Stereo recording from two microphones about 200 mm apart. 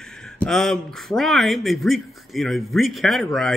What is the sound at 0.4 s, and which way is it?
Speech, centre (ahead or behind).